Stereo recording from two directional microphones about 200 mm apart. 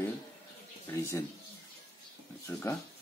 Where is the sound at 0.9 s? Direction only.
15° left (ahead or behind).